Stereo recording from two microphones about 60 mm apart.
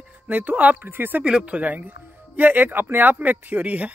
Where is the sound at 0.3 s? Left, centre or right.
Right.